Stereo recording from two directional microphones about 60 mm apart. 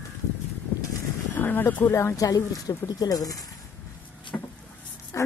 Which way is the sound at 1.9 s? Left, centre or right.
Left.